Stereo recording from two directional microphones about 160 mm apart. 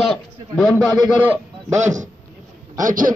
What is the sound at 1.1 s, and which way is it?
Speech, 10° right (ahead or behind).